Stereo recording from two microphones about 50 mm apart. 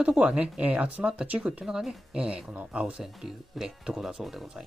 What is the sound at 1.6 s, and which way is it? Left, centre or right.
Speech, centre.